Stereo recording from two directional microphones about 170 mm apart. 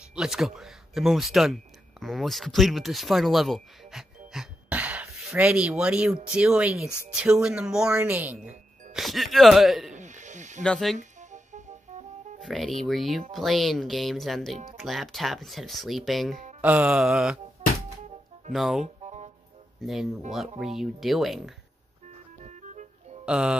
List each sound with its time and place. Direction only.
0.1 s speech: 5° right (ahead or behind)
9.9 s snake: 45° right (ahead or behind)
10.6 s speech: 5° left (ahead or behind)
11.0 s music: 45° right (ahead or behind)
12.4 s speech: centre (ahead or behind)
18.5 s speech: centre (ahead or behind)
19.0 s music: 45° right (ahead or behind)
19.8 s speech: centre (ahead or behind)
22.4 s music: 45° right (ahead or behind)
23.2 s speech: 5° right (ahead or behind)